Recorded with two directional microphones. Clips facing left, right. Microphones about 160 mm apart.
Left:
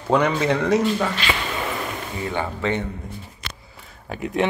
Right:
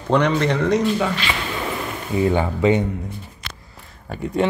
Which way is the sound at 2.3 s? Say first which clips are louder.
Right 3 dB; 15° right (ahead or behind).